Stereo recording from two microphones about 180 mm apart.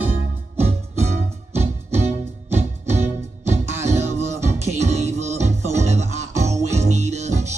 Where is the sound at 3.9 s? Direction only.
40° right (ahead or behind).